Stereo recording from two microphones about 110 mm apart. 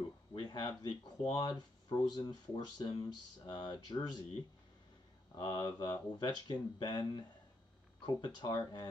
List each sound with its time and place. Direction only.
0.3 s a sound: 40° left (ahead or behind)
1.3 s speech: 40° left (ahead or behind)
5.4 s speech: 40° left (ahead or behind)